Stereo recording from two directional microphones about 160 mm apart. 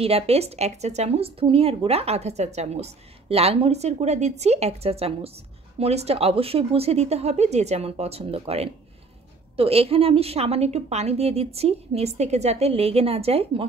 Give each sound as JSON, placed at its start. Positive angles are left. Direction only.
{"t": 0.0, "sound": "speech", "side_deg": -40}